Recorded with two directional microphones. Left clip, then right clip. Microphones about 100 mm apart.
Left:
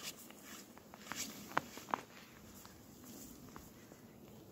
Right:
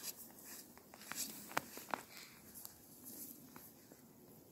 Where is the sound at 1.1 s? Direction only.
Centre (ahead or behind).